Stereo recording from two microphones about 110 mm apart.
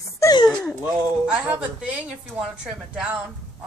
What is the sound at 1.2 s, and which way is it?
A woman's voice, 15° right (ahead or behind).